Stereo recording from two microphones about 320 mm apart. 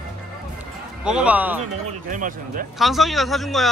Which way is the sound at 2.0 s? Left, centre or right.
Right.